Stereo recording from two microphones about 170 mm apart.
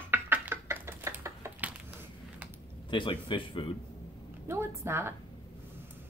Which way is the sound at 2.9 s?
30° left (ahead or behind).